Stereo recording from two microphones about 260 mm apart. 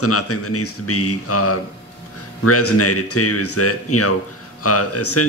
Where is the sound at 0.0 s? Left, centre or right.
Left.